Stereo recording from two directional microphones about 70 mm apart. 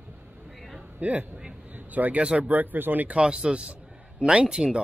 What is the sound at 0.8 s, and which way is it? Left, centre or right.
A man's voice, right.